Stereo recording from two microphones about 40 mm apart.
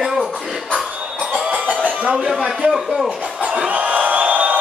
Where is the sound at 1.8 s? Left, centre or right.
Right.